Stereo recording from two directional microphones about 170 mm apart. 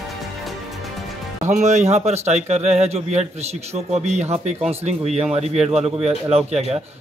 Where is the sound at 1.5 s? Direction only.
40° right (ahead or behind).